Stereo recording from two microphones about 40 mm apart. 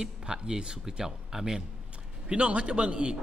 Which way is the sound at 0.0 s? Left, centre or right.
Centre.